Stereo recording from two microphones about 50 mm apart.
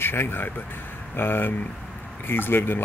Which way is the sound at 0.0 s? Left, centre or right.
Left.